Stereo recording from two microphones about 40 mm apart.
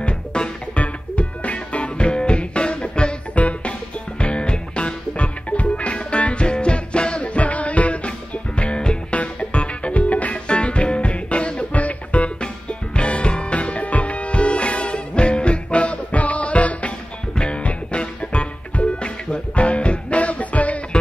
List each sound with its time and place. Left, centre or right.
0.0 s music: left
3.3 s music: left
4.2 s music: left
12.9 s music: left